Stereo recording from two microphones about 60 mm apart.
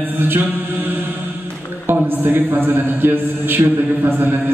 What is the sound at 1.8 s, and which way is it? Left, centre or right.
A man's voice, right.